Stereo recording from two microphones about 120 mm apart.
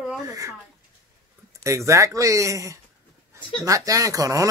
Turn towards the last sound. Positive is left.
turn(degrees=-30)  # may be behind; listen again after turning